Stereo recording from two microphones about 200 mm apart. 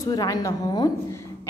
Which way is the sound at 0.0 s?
20° left (ahead or behind).